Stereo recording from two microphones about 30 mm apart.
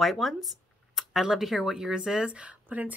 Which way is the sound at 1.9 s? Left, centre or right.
Right.